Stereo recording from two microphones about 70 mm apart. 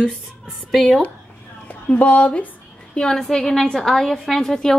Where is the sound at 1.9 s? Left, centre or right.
Centre.